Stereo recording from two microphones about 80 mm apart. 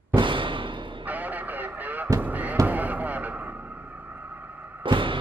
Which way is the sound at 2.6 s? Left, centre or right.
Right.